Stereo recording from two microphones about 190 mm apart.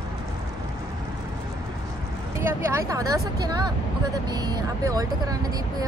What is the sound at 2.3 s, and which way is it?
Speech, 15° right (ahead or behind).